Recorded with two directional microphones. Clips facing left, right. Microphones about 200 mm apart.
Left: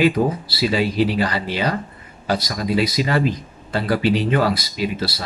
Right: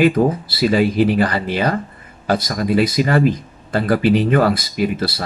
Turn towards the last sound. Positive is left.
turn(degrees=-55)  # may be behind; listen again after turning